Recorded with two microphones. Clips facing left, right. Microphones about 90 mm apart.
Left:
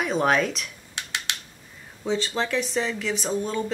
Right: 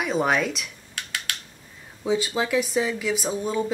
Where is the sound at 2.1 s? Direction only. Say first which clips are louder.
Right 2 dB; 10° right (ahead or behind).